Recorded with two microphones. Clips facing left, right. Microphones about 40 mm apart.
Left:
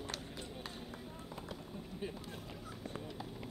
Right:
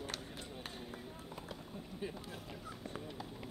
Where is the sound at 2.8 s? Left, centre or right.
Centre.